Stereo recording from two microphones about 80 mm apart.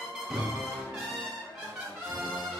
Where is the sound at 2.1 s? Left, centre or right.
Centre.